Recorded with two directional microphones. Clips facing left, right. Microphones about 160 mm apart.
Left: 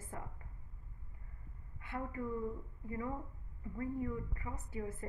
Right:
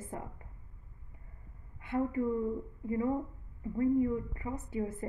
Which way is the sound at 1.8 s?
20° right (ahead or behind).